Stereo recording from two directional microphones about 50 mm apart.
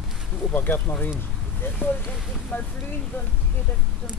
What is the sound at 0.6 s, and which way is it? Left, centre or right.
Speech, left.